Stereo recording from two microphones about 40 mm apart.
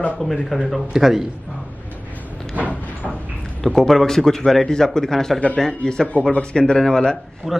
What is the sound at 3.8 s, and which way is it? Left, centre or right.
A man's voice, centre.